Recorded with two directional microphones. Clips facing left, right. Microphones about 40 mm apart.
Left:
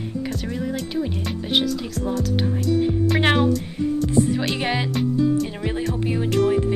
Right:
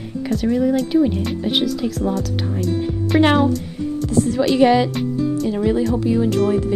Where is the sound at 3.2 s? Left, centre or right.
Centre.